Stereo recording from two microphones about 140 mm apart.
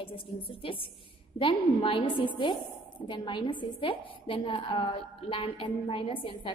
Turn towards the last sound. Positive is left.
turn(degrees=40)  # may be behind; listen again after turning